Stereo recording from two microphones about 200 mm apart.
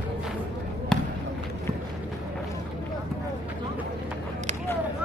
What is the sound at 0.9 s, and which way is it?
Basketball bounce, 5° left (ahead or behind).